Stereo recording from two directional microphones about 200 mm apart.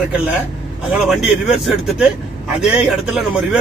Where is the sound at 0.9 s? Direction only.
Centre (ahead or behind).